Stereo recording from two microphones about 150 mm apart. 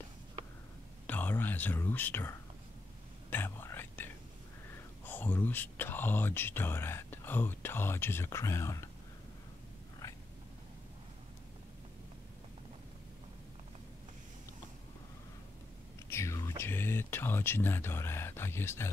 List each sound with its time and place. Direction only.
1.0 s whispering: 10° left (ahead or behind)
5.0 s speech: 15° left (ahead or behind)
16.1 s a sound: 20° left (ahead or behind)